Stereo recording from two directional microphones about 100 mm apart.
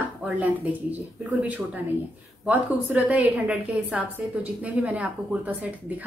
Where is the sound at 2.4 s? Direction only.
15° right (ahead or behind).